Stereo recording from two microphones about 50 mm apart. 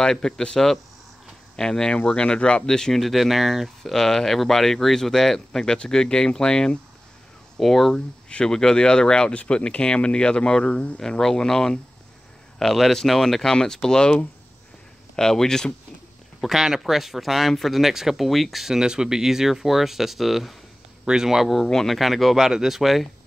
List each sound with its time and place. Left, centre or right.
0.0 s speech: centre
8.3 s speech: left
11.0 s speech: centre
16.3 s speech: centre
18.8 s speech: centre
21.0 s speech: centre
21.6 s speech: centre